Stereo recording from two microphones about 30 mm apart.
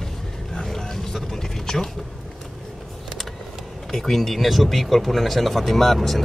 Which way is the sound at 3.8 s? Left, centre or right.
Centre.